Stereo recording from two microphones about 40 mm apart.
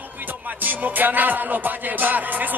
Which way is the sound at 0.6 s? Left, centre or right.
Right.